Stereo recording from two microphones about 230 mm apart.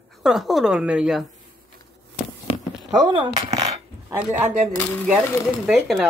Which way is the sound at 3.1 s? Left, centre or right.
Right.